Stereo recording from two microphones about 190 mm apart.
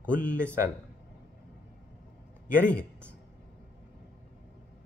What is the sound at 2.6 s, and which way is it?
Speech, 5° left (ahead or behind).